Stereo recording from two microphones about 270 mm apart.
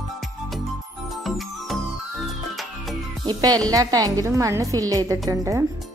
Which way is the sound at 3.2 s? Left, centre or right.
Centre.